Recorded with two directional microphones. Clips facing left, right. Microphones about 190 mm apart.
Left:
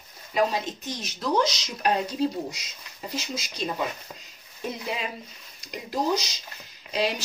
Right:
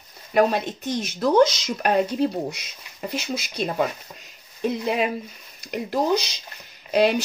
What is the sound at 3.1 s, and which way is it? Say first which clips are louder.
Speech: right 5 dB; 60° right (ahead or behind).